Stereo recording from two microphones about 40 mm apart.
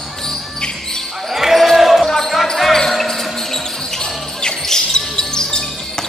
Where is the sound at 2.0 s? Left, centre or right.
Centre.